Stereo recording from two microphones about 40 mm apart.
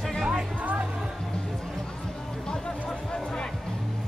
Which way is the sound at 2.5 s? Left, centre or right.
Centre.